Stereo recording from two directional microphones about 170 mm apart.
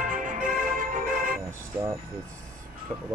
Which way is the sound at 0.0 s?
50° right (ahead or behind).